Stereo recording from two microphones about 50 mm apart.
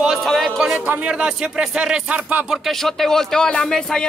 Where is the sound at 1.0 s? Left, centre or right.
Centre.